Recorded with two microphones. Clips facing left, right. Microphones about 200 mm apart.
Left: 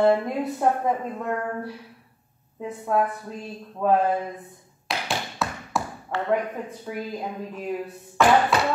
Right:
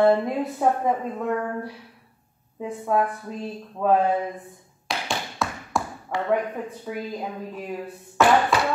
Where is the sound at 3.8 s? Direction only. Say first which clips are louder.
Right 1 dB; 5° right (ahead or behind).